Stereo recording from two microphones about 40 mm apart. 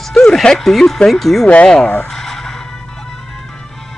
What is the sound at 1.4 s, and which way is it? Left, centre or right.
Speech, left.